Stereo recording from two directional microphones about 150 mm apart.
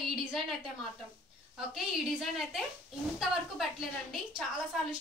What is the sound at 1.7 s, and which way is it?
Speech, 5° right (ahead or behind).